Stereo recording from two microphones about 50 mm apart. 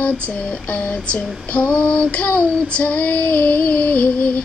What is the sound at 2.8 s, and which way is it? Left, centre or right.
Child singing, left.